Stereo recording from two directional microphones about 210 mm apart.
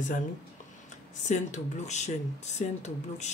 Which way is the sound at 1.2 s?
35° left (ahead or behind).